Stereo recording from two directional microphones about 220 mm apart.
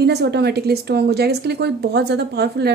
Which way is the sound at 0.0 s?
50° right (ahead or behind).